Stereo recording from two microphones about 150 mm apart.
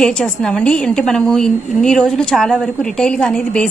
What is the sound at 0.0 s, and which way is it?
A woman's voice, 5° left (ahead or behind).